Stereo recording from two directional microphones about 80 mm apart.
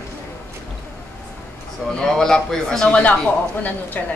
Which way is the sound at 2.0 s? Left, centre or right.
Centre.